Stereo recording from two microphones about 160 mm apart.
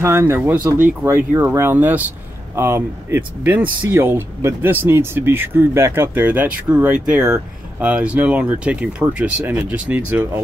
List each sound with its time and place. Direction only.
0.0 s speech: 15° right (ahead or behind)